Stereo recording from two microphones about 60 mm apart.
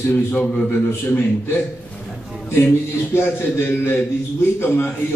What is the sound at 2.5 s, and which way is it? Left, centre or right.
A man's voice, left.